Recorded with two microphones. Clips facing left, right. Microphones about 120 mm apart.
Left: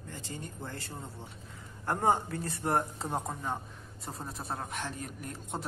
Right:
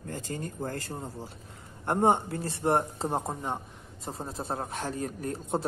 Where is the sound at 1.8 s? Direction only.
25° right (ahead or behind).